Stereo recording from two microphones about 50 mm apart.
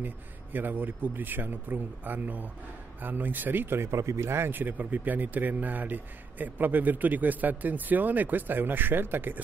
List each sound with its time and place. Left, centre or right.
0.0 s a man's voice: right
3.9 s speech: right
4.5 s a man's voice: right